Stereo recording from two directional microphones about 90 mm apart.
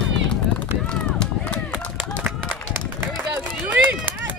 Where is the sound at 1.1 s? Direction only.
15° left (ahead or behind).